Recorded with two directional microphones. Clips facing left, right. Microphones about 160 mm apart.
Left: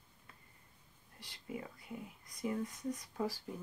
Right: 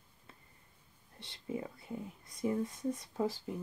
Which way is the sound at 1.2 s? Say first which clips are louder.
Right 5 dB; 25° right (ahead or behind).